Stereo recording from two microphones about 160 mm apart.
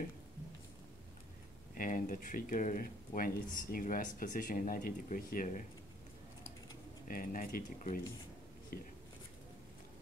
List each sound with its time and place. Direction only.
1.8 s speech: 55° left (ahead or behind)
7.1 s speech: 60° left (ahead or behind)